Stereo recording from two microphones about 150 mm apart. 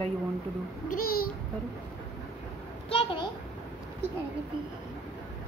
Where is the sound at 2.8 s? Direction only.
40° left (ahead or behind).